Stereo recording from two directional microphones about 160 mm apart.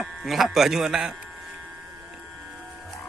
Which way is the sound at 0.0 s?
Centre (ahead or behind).